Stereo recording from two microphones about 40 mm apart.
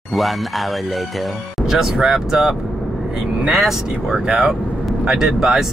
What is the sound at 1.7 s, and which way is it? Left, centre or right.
Speech, centre.